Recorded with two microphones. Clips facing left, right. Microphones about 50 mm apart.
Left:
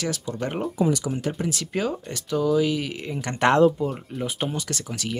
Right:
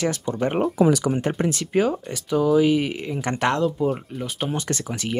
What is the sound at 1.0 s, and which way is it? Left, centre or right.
Speech, right.